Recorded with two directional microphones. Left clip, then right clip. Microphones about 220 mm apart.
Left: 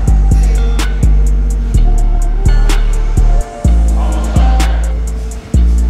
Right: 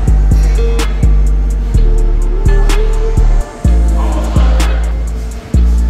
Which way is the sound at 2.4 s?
Centre (ahead or behind).